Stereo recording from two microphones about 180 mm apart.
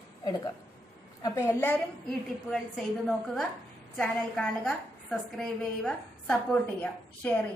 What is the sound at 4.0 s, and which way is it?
A woman's voice, 5° left (ahead or behind).